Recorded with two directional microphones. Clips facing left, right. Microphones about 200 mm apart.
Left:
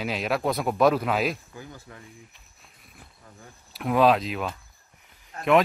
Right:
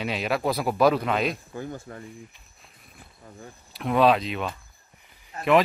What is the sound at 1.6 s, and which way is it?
Speech, 50° right (ahead or behind).